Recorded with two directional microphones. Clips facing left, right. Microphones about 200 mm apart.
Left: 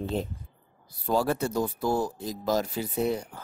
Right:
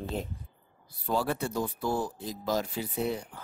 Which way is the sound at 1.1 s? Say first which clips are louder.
Left 4 dB; 40° left (ahead or behind).